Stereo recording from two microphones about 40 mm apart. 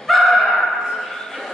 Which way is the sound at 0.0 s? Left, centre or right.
Centre.